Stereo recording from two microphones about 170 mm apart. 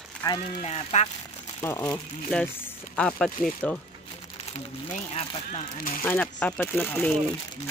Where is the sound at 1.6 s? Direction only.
15° left (ahead or behind).